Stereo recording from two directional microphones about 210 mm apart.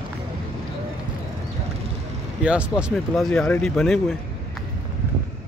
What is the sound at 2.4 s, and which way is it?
Speech, 5° right (ahead or behind).